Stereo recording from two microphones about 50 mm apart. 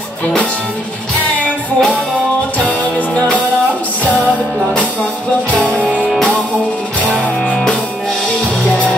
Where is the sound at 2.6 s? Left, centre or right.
Left.